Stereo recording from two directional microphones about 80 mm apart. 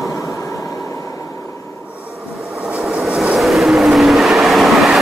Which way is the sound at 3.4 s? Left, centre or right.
Centre.